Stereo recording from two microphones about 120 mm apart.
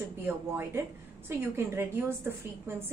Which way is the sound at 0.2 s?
20° right (ahead or behind).